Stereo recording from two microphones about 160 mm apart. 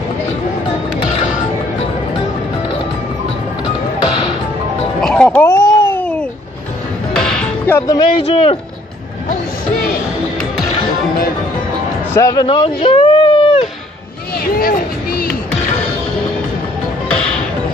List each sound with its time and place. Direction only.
5.0 s music: 5° left (ahead or behind)
5.9 s babbling: 10° left (ahead or behind)
7.2 s music: 5° left (ahead or behind)
7.8 s speech: 25° left (ahead or behind)
8.2 s speech: 40° left (ahead or behind)
12.1 s a man's voice: 20° left (ahead or behind)
12.4 s a sound: 35° left (ahead or behind)
14.4 s a sound: 65° left (ahead or behind)
17.1 s music: 5° left (ahead or behind)